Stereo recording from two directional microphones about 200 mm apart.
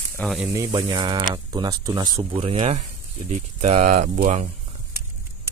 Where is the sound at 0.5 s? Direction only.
15° right (ahead or behind); by 4.5 s 35° right (ahead or behind).